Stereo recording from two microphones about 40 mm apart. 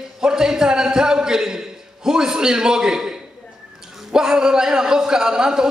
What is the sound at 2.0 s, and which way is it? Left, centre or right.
A man's voice, centre.